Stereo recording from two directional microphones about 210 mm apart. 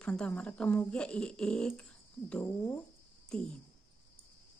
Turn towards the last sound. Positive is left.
turn(degrees=5)  # may be behind; listen again after turning